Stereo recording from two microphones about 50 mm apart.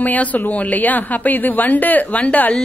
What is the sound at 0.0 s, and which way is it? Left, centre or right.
A woman's voice, left.